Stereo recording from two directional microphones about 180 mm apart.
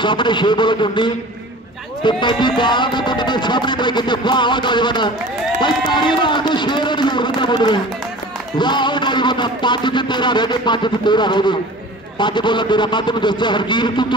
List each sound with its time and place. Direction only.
0.0 s music: 25° left (ahead or behind)